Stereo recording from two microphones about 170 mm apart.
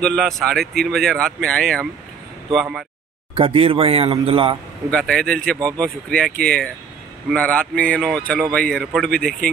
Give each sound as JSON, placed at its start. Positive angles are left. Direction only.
{"t": 0.0, "sound": "speech", "side_deg": 0}
{"t": 3.3, "sound": "speech", "side_deg": -35}
{"t": 4.9, "sound": "speech", "side_deg": 5}